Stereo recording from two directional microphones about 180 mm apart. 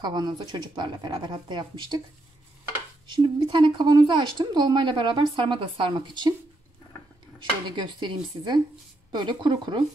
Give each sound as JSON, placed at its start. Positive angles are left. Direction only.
{"t": 0.0, "sound": "speech", "side_deg": -25}
{"t": 3.1, "sound": "speech", "side_deg": -25}
{"t": 7.3, "sound": "speech", "side_deg": -25}